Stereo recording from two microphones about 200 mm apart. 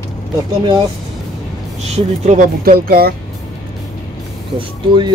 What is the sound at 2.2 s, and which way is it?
Speech, 35° right (ahead or behind).